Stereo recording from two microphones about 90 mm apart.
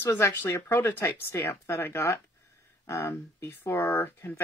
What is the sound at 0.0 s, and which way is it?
Speech, 25° left (ahead or behind).